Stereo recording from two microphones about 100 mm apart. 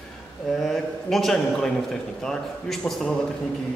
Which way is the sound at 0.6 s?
Centre (ahead or behind).